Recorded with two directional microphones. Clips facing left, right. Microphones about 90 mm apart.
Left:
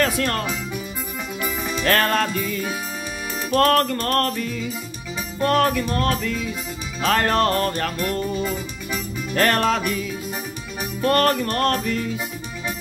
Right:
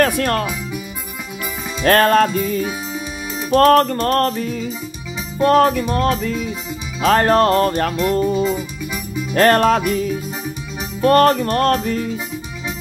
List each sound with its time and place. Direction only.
0.0 s music: 45° right (ahead or behind)
1.9 s music: 40° right (ahead or behind)
2.2 s music: 25° right (ahead or behind)
9.3 s music: 35° right (ahead or behind)
11.0 s music: 30° right (ahead or behind)